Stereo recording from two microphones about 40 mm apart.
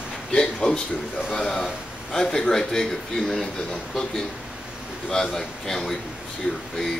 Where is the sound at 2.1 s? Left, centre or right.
Centre.